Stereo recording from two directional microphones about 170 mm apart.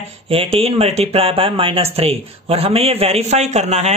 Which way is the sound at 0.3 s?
35° right (ahead or behind).